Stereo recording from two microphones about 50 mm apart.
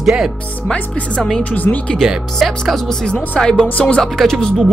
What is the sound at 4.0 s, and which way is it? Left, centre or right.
Speech, centre.